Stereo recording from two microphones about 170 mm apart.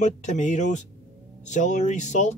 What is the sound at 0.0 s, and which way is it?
Speech, 45° left (ahead or behind).